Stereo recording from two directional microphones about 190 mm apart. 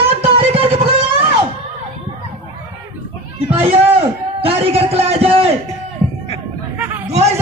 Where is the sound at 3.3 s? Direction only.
30° right (ahead or behind).